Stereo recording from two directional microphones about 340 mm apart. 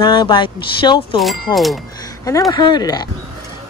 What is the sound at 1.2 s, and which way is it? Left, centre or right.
Speech, centre.